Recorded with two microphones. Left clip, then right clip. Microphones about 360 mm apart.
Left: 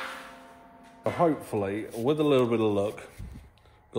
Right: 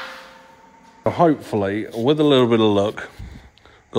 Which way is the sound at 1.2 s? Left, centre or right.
Right.